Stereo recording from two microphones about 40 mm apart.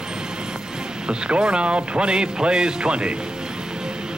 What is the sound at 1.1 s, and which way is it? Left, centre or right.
Speech, right.